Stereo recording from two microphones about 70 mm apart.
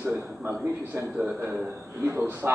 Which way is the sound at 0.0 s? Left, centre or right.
Right.